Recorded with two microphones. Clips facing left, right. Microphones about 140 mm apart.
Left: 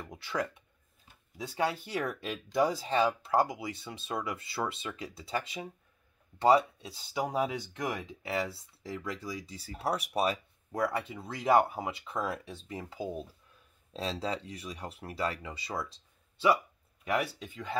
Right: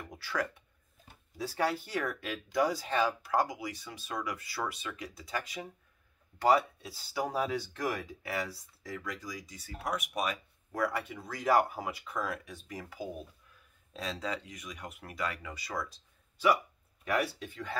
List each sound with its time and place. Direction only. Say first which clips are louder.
0.1 s speech: left 1 dB; 20° left (ahead or behind)